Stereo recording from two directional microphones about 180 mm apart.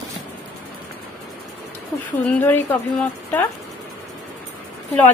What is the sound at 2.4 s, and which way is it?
Speech, 10° left (ahead or behind).